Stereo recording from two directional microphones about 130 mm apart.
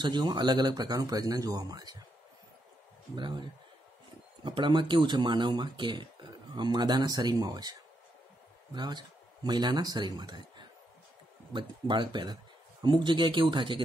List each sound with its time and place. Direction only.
0.0 s speech: 35° right (ahead or behind)
3.2 s speech: 35° right (ahead or behind)
4.5 s speech: 35° right (ahead or behind)
8.7 s speech: 30° right (ahead or behind)